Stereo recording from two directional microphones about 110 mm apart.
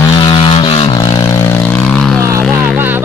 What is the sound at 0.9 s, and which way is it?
Vehicle, 40° left (ahead or behind).